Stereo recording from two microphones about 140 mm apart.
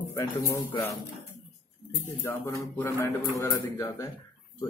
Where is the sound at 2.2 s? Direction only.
20° left (ahead or behind).